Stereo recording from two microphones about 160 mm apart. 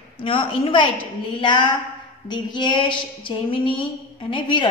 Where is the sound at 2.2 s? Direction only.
30° left (ahead or behind).